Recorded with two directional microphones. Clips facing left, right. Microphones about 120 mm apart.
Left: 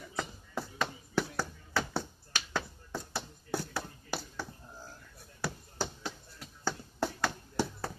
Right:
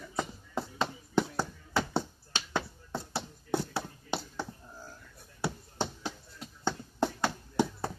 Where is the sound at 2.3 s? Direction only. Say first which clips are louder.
Right 2 dB; 25° right (ahead or behind).